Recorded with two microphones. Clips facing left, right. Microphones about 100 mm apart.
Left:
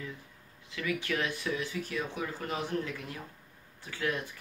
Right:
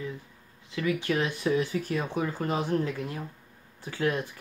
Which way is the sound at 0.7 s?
30° right (ahead or behind).